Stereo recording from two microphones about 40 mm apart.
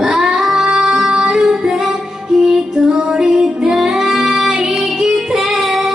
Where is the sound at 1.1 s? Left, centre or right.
Right.